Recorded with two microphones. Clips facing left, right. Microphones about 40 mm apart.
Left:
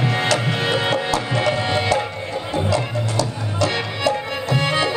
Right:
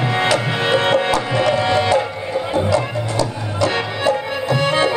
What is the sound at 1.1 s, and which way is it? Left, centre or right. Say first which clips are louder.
Tabla: right 3 dB; centre.